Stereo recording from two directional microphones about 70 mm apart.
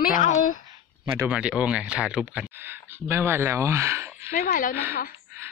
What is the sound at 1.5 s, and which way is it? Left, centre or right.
Speech, centre.